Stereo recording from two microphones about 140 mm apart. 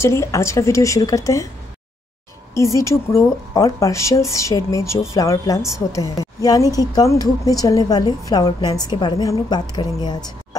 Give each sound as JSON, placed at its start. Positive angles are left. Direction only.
{"t": 0.0, "sound": "speech", "side_deg": 20}
{"t": 2.5, "sound": "speech", "side_deg": 20}